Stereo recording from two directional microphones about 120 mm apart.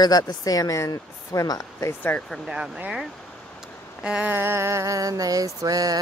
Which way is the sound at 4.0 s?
5° right (ahead or behind).